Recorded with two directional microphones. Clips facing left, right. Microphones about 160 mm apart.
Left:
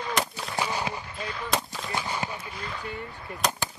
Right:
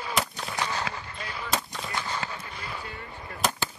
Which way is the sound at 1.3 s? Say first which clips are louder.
Left 1 dB; 10° right (ahead or behind).